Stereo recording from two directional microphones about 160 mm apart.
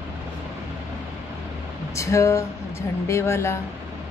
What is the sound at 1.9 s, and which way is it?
A woman's voice, 20° left (ahead or behind).